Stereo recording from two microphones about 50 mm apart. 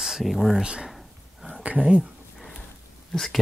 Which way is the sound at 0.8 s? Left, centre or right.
Centre.